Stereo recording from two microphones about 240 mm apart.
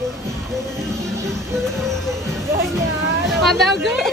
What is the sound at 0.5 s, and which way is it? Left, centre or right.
Music, centre.